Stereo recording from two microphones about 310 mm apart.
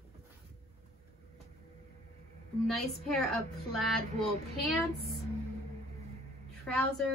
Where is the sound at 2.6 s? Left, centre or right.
Centre.